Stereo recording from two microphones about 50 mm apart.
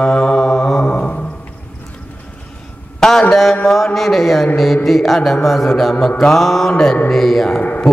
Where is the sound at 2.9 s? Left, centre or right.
Centre.